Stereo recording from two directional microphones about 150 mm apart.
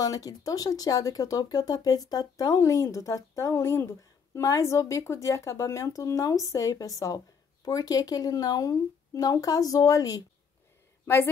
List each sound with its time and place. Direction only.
0.0 s speech: 25° left (ahead or behind)